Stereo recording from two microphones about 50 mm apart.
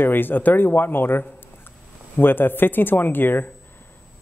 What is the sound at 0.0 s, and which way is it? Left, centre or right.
A man's voice, left.